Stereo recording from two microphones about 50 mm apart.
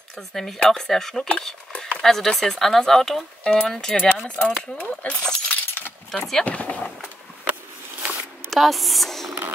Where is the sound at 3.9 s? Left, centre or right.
Centre.